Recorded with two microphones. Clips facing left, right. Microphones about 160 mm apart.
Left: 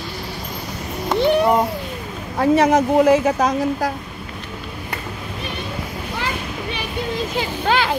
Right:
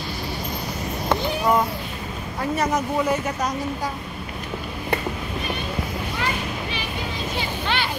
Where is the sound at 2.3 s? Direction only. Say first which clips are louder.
Left 9 dB; 75° left (ahead or behind).